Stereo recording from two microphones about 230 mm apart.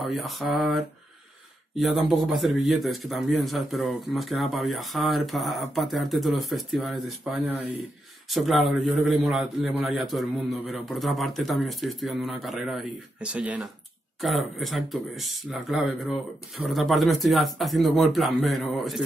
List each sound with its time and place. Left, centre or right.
0.0 s a man's voice: centre